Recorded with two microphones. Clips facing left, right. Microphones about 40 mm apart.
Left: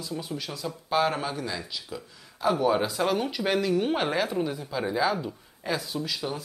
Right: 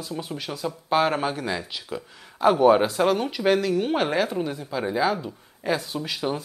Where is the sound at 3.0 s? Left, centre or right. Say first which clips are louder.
Right 5 dB; centre.